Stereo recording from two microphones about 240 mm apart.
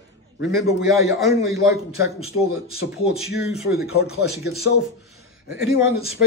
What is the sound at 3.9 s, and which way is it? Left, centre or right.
Speech, left.